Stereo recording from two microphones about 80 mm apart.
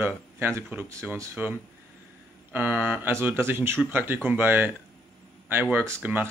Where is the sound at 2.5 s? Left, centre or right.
Right.